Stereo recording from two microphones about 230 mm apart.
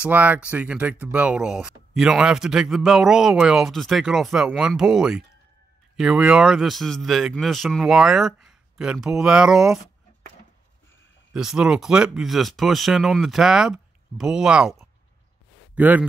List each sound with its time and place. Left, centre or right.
0.0 s speech: centre
11.3 s speech: centre